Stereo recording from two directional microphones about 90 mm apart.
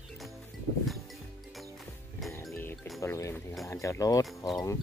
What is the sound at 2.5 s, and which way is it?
Music, 25° left (ahead or behind).